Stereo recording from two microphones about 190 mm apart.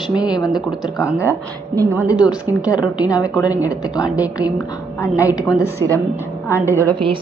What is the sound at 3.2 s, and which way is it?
A woman's voice, 20° left (ahead or behind).